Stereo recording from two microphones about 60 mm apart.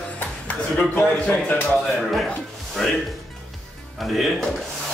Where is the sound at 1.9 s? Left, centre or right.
Centre.